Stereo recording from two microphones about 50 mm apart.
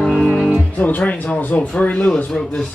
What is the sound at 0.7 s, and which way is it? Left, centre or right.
Speech, left.